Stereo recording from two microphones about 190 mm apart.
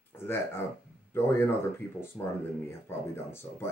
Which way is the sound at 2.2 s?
5° left (ahead or behind).